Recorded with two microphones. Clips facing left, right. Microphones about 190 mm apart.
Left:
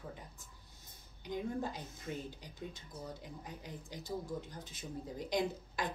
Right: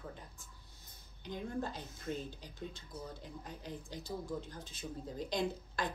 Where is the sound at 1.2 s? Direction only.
15° left (ahead or behind).